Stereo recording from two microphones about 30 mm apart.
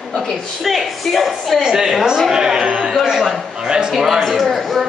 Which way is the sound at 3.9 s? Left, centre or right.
Centre.